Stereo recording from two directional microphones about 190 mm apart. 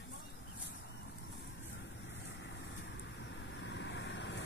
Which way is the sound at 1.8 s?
65° left (ahead or behind).